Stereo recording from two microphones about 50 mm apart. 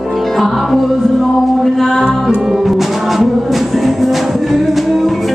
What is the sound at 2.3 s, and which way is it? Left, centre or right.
Music, right.